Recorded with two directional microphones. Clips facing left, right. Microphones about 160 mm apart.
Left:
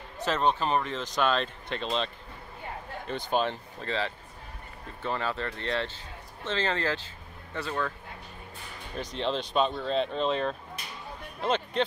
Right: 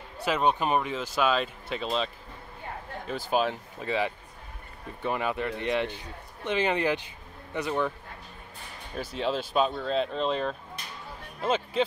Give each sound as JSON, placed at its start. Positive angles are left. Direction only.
{"t": 0.2, "sound": "speech", "side_deg": -10}
{"t": 3.1, "sound": "speech", "side_deg": -5}
{"t": 8.9, "sound": "speech", "side_deg": -5}